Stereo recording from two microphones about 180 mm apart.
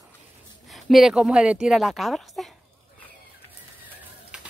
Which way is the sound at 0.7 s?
Centre (ahead or behind).